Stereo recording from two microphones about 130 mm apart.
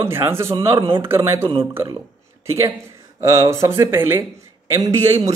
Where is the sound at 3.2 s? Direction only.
25° right (ahead or behind).